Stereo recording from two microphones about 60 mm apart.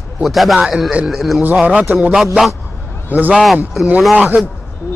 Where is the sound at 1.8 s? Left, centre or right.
Right.